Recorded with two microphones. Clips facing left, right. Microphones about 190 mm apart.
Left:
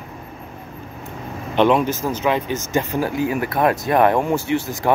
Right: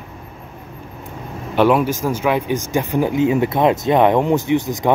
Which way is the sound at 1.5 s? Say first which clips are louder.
Right 1 dB; 10° right (ahead or behind).